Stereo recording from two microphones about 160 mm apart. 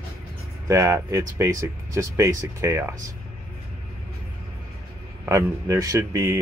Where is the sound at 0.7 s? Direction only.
20° right (ahead or behind).